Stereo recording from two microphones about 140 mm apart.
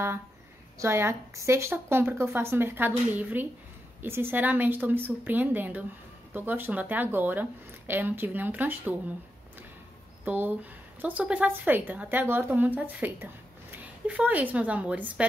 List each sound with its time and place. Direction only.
0.7 s a woman's voice: 20° right (ahead or behind)
10.2 s a woman's voice: 15° right (ahead or behind)